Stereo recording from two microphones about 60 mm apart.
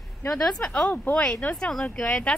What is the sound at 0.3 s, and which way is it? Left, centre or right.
Speech, centre.